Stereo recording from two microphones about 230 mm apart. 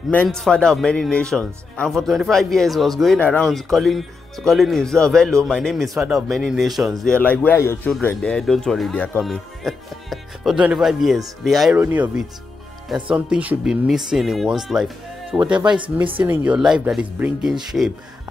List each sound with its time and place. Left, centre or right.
0.1 s speech: centre
15.6 s speech: right
16.2 s speech: centre